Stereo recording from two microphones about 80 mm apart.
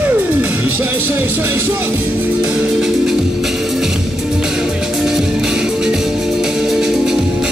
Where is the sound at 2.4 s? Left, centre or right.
Centre.